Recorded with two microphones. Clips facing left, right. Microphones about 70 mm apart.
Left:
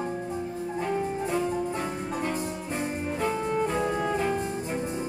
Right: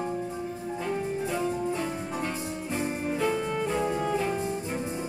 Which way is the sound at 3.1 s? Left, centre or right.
Left.